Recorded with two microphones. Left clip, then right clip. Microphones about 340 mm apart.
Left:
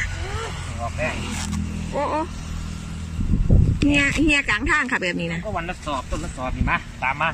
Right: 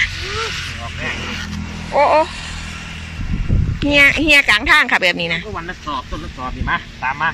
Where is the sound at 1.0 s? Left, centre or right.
Centre.